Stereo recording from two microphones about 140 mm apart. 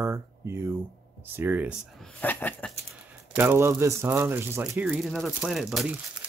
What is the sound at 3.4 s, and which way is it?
Speech, 20° right (ahead or behind).